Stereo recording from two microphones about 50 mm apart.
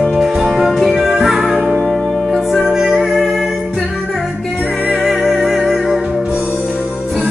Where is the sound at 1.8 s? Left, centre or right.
Centre.